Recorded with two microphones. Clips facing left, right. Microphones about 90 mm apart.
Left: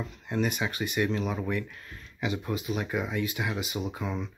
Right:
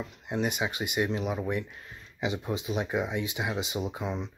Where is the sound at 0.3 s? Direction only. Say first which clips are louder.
Even; 20° right (ahead or behind).